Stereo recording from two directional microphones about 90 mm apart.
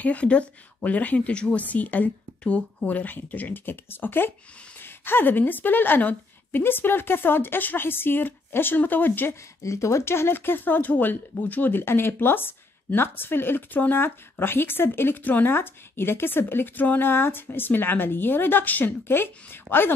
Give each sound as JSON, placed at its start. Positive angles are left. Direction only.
{"t": 0.0, "sound": "speech", "side_deg": 15}
{"t": 9.6, "sound": "speech", "side_deg": 35}